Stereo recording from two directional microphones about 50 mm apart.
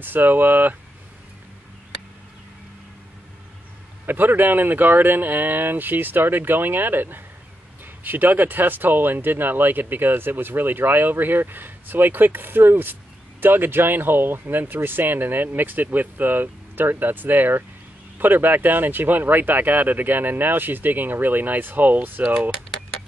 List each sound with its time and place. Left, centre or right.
0.0 s speech: right
4.0 s speech: right